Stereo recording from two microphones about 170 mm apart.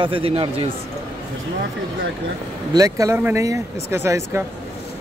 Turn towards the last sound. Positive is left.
turn(degrees=-15)  # may be behind; listen again after turning